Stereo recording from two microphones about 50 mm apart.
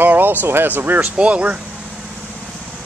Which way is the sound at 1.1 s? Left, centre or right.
Right.